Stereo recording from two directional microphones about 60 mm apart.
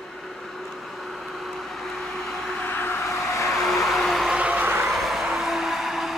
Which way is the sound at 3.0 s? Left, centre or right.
Left.